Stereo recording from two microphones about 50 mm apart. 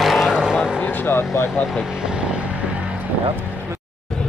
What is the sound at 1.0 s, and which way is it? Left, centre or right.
Speech, left.